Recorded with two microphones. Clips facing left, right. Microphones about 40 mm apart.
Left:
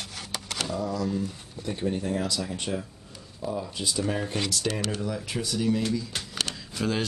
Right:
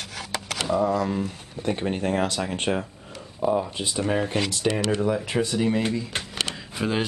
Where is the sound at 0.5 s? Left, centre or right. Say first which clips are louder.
Right 7 dB; right.